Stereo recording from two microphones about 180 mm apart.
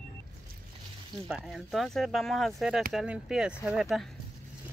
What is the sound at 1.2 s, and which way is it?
Speech, centre (ahead or behind).